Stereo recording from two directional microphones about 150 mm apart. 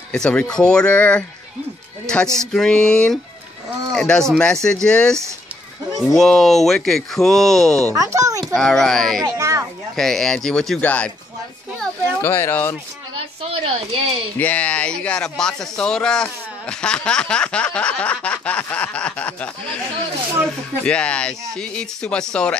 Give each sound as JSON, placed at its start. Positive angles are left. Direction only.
{"t": 0.1, "sound": "speech", "side_deg": 5}
{"t": 2.5, "sound": "speech", "side_deg": 5}
{"t": 7.9, "sound": "a sound", "side_deg": -20}
{"t": 8.5, "sound": "speech", "side_deg": 5}
{"t": 9.2, "sound": "children playing", "side_deg": -20}
{"t": 9.9, "sound": "speech", "side_deg": 0}
{"t": 12.2, "sound": "speech", "side_deg": 15}
{"t": 13.4, "sound": "a woman's voice", "side_deg": -40}
{"t": 14.4, "sound": "speech", "side_deg": 10}